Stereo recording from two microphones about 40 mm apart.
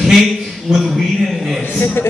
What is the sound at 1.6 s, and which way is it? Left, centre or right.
Speech, left.